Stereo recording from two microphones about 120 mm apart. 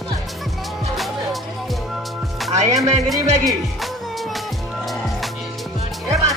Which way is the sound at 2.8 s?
Centre (ahead or behind).